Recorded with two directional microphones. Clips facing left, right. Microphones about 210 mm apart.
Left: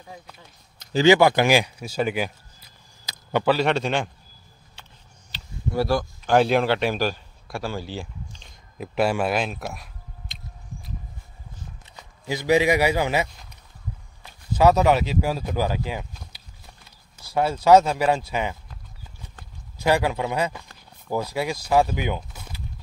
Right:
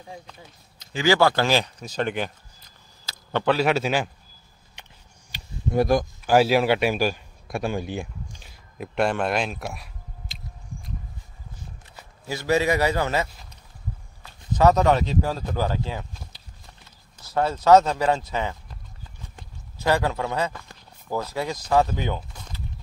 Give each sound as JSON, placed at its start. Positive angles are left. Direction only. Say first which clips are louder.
{"t": 1.0, "sound": "speech", "louder": "left 3 dB", "side_deg": 15}
{"t": 3.4, "sound": "a man's voice", "louder": "right 1 dB", "side_deg": -5}
{"t": 4.8, "sound": "a sound", "louder": "right 1 dB", "side_deg": -15}
{"t": 6.2, "sound": "a man's voice", "louder": "even", "side_deg": -5}
{"t": 12.3, "sound": "speech", "louder": "left 2 dB", "side_deg": 15}
{"t": 17.2, "sound": "speech", "louder": "left 1 dB", "side_deg": 10}
{"t": 19.8, "sound": "speech", "louder": "left 1 dB", "side_deg": 15}